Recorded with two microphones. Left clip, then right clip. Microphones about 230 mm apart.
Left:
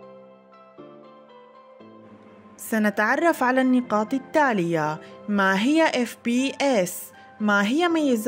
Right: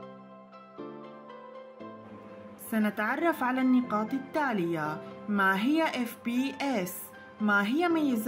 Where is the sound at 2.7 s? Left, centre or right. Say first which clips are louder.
Left 8 dB; left.